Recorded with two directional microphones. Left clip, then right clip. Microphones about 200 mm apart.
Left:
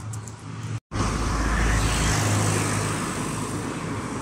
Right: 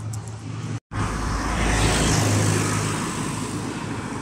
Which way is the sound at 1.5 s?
25° right (ahead or behind).